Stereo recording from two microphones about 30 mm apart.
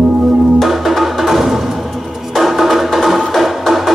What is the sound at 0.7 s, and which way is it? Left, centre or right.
Music, centre.